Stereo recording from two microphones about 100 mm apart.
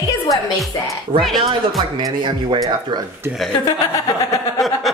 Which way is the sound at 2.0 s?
50° right (ahead or behind).